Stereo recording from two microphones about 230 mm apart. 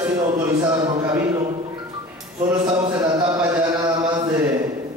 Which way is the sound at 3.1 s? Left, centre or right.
Centre.